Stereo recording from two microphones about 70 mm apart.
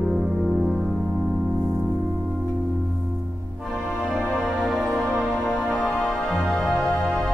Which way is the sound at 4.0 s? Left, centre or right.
Centre.